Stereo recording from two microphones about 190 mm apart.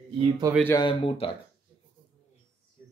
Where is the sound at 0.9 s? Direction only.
30° left (ahead or behind).